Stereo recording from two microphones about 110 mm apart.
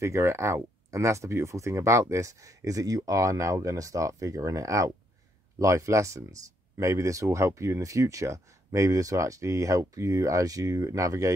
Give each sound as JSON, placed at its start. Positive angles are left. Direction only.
{"t": 0.0, "sound": "speech", "side_deg": -25}